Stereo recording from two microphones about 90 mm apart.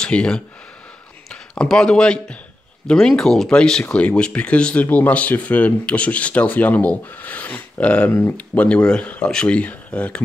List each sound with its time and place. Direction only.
0.0 s speech: 10° left (ahead or behind)